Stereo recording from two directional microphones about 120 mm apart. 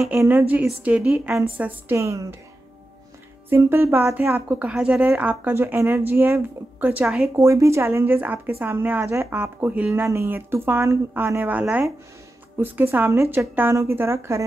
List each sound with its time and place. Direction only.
0.2 s speech: 15° right (ahead or behind)
1.6 s a woman's voice: 20° right (ahead or behind)
3.4 s a woman's voice: 20° right (ahead or behind)